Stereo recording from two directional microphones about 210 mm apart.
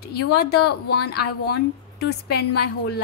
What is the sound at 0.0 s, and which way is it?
A woman's voice, 50° left (ahead or behind).